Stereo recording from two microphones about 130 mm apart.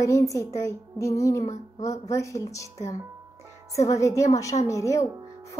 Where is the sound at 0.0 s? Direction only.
25° left (ahead or behind).